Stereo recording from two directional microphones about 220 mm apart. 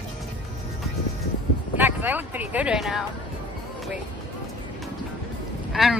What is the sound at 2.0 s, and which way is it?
Speech, 10° right (ahead or behind).